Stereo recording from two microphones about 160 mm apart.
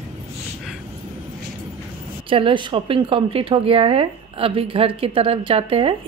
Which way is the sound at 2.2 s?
35° right (ahead or behind).